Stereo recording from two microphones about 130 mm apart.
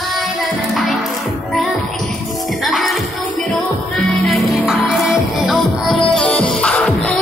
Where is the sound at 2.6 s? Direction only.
Centre (ahead or behind).